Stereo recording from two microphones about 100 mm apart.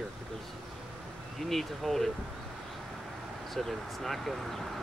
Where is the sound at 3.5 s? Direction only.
Centre (ahead or behind).